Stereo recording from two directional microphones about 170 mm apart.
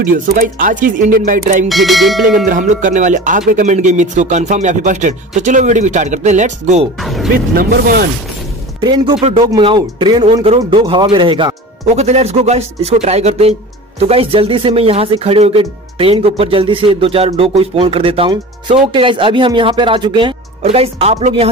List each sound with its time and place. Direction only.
0.0 s speech: 50° right (ahead or behind)
1.7 s speech: centre (ahead or behind)
2.3 s speech: 50° right (ahead or behind)
7.0 s speech: centre (ahead or behind)
7.3 s speech: 60° right (ahead or behind)
8.8 s speech: 30° right (ahead or behind)